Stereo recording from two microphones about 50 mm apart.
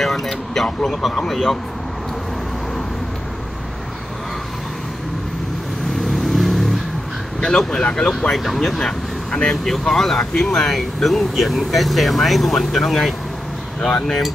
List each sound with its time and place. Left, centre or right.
0.0 s a sound: centre
0.8 s speech: centre
6.0 s vehicle: centre
7.3 s speech: centre